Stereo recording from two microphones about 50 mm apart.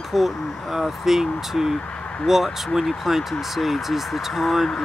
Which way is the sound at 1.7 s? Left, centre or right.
Left.